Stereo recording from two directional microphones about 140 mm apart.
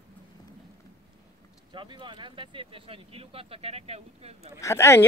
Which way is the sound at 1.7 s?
35° right (ahead or behind).